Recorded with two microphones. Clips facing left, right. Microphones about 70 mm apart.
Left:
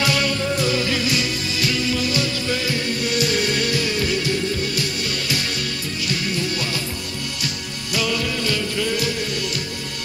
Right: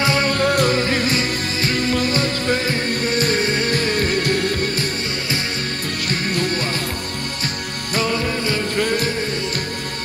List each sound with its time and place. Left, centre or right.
0.0 s music: right
0.3 s music: right
6.0 s music: right
7.9 s music: right
8.7 s music: right